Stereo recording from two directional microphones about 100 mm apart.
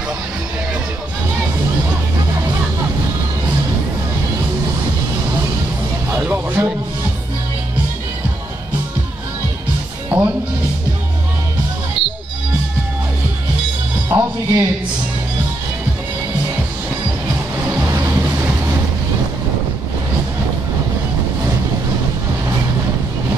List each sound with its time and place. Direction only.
6.1 s music: 15° right (ahead or behind)
10.1 s music: 15° right (ahead or behind)
12.0 s music: 65° left (ahead or behind)
14.0 s music: 25° right (ahead or behind)
17.6 s vehicle: 20° right (ahead or behind)